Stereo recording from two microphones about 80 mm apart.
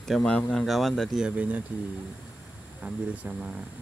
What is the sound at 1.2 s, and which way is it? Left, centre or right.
Speech, centre.